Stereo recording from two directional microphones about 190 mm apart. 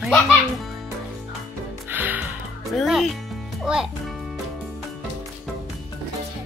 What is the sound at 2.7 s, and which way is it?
A child's voice, centre (ahead or behind).